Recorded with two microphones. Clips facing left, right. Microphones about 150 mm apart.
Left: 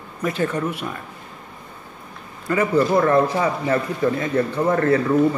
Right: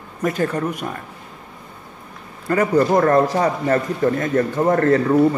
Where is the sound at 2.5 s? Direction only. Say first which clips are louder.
Right 2 dB; 40° right (ahead or behind).